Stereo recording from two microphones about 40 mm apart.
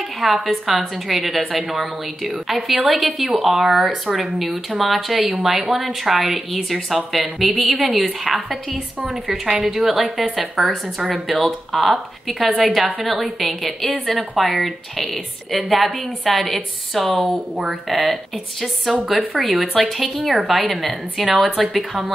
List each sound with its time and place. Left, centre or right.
0.2 s a woman's voice: centre
9.0 s a woman's voice: centre